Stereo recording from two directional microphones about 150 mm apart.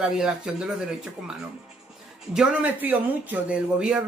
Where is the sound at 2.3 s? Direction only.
10° right (ahead or behind).